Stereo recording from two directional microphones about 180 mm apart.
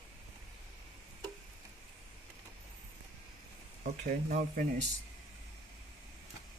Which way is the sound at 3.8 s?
45° right (ahead or behind).